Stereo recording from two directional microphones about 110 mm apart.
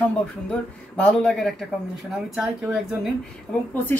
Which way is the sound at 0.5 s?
10° left (ahead or behind).